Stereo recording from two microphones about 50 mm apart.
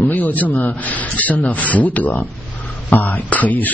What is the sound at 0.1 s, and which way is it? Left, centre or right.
Speech, left.